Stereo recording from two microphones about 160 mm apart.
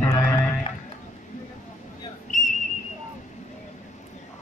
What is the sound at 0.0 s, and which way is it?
Music, 15° left (ahead or behind).